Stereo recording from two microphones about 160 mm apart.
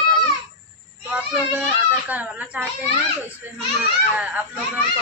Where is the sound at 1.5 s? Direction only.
10° right (ahead or behind).